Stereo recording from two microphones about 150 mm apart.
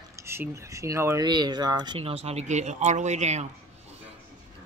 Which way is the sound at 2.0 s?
40° right (ahead or behind).